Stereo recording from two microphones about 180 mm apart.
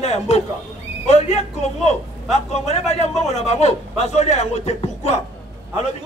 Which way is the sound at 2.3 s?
35° left (ahead or behind).